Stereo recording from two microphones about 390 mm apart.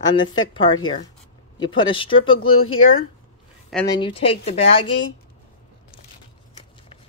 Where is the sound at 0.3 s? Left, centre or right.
Centre.